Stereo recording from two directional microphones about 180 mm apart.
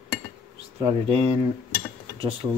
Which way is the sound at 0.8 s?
30° right (ahead or behind).